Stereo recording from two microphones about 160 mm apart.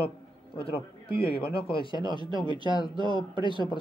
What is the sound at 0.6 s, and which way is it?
A man's voice, 35° left (ahead or behind).